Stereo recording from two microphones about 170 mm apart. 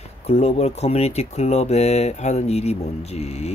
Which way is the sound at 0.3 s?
35° left (ahead or behind).